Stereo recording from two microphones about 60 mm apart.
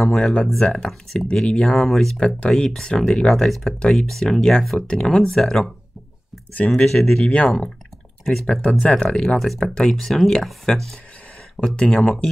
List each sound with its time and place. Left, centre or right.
0.2 s speech: centre
3.3 s speech: centre
6.7 s speech: centre